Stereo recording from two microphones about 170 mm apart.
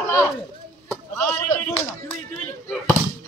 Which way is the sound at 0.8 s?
15° left (ahead or behind).